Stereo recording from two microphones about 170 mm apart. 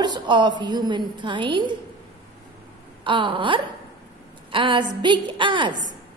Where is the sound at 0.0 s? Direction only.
25° right (ahead or behind).